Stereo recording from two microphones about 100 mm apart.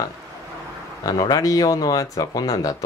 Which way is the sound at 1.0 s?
40° left (ahead or behind).